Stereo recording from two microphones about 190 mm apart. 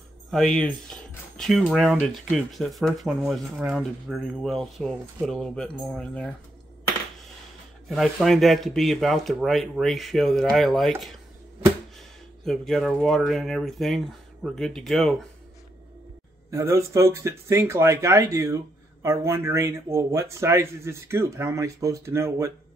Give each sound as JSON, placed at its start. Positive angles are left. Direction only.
{"t": 0.3, "sound": "speech", "side_deg": 0}
{"t": 7.9, "sound": "speech", "side_deg": 0}
{"t": 12.4, "sound": "speech", "side_deg": 0}
{"t": 16.4, "sound": "speech", "side_deg": -15}